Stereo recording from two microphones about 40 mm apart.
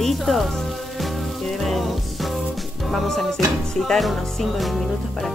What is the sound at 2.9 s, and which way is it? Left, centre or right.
Speech, centre.